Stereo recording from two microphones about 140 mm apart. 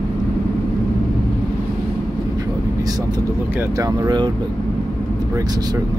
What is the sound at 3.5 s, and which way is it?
Speech, 20° right (ahead or behind).